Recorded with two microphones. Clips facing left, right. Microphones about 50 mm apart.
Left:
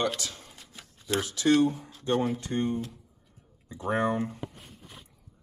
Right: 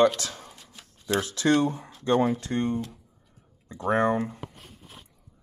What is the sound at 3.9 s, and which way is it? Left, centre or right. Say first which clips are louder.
Speech: right 4 dB; right.